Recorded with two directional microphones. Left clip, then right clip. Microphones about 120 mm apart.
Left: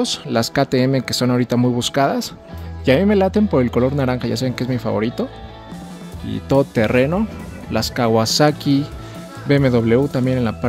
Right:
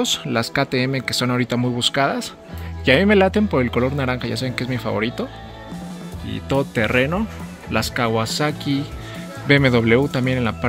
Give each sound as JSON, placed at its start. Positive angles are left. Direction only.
{"t": 0.0, "sound": "speech", "side_deg": 30}
{"t": 2.8, "sound": "speech", "side_deg": 20}
{"t": 6.2, "sound": "speech", "side_deg": 40}
{"t": 8.1, "sound": "speech", "side_deg": 50}
{"t": 9.5, "sound": "speech", "side_deg": 20}